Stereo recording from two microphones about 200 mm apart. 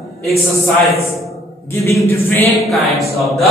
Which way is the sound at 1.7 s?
15° left (ahead or behind).